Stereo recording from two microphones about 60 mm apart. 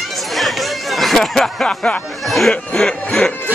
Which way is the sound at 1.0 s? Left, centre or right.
Centre.